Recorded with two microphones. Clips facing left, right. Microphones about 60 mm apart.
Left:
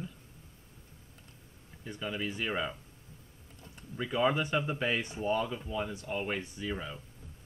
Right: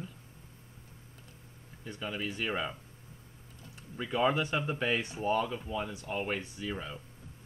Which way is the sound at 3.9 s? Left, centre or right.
Centre.